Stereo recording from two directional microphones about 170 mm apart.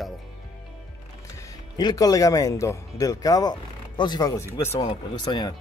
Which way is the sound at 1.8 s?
25° left (ahead or behind).